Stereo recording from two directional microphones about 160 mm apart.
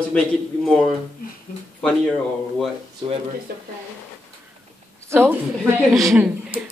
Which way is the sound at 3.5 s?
70° right (ahead or behind).